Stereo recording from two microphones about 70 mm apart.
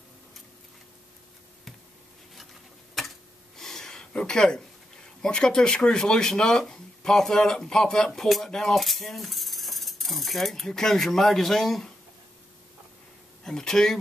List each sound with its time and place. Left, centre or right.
3.0 s tick-tock: centre
3.5 s speech: centre
13.4 s speech: centre